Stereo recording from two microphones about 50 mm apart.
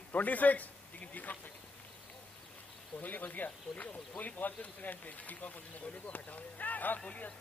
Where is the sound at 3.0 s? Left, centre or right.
Left.